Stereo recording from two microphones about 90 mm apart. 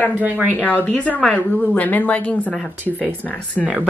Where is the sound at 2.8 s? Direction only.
20° right (ahead or behind).